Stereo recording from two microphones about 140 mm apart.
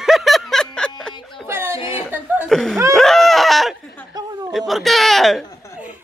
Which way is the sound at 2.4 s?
5° left (ahead or behind).